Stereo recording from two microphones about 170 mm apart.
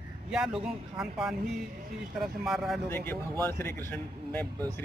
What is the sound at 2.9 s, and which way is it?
Speech, 15° left (ahead or behind).